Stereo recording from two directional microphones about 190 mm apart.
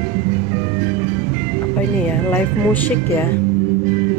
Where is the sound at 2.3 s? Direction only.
10° left (ahead or behind).